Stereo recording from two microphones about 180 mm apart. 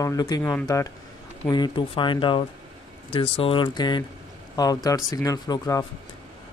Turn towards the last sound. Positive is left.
turn(degrees=20)  # may be behind; listen again after turning